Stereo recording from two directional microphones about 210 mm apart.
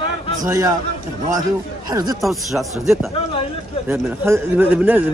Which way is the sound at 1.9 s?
20° right (ahead or behind).